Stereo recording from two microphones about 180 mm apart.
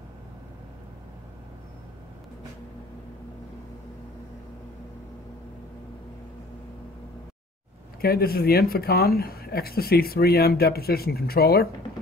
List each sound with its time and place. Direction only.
8.0 s speech: 60° left (ahead or behind)